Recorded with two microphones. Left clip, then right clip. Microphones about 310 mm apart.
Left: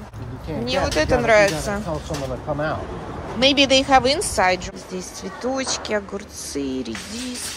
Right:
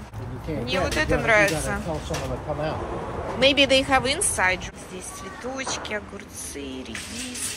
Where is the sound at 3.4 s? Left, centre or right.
Centre.